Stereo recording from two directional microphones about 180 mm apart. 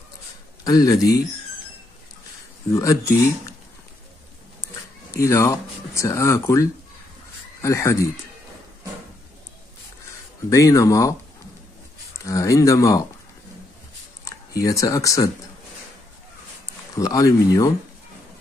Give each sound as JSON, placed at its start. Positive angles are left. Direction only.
{"t": 0.7, "sound": "speech", "side_deg": 20}
{"t": 2.7, "sound": "speech", "side_deg": 15}
{"t": 5.1, "sound": "speech", "side_deg": 15}
{"t": 10.5, "sound": "speech", "side_deg": 15}
{"t": 12.3, "sound": "speech", "side_deg": 15}
{"t": 14.2, "sound": "speech", "side_deg": 20}
{"t": 16.9, "sound": "speech", "side_deg": 20}